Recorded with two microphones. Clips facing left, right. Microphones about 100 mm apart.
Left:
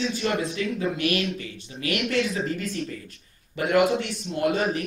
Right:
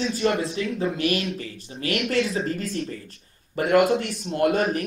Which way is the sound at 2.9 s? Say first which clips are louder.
Right 1 dB; 35° right (ahead or behind).